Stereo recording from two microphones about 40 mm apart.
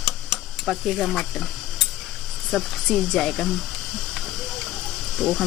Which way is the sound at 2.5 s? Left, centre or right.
Centre.